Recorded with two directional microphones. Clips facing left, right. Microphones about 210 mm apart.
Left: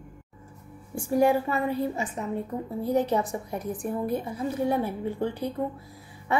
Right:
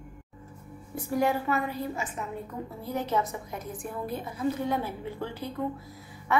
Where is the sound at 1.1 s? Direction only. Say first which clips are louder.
Left 4 dB; 30° left (ahead or behind).